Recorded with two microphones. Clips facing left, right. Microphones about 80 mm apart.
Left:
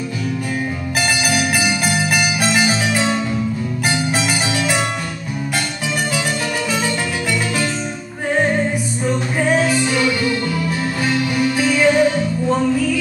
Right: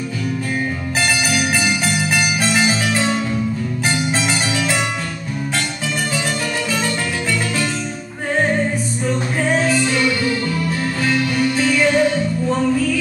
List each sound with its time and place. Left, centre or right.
2.1 s music: centre
9.0 s music: centre